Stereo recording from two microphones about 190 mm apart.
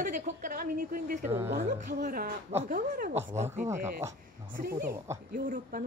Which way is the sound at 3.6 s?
15° right (ahead or behind).